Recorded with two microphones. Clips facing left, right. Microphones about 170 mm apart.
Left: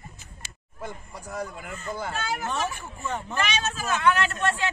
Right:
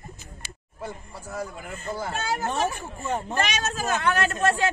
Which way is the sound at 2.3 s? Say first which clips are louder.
Right 5 dB; 40° right (ahead or behind).